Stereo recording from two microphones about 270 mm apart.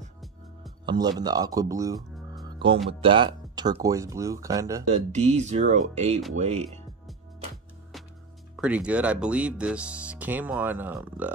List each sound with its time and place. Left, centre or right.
0.8 s speech: centre
2.0 s music: centre
2.4 s music: centre
2.9 s speech: centre
5.1 s speech: right
8.5 s speech: centre